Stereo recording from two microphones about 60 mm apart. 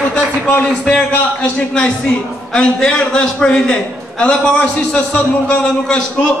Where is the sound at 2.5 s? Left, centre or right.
Centre.